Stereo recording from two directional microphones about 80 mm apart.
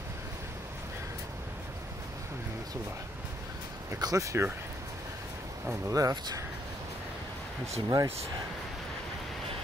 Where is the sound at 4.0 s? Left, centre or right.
Right.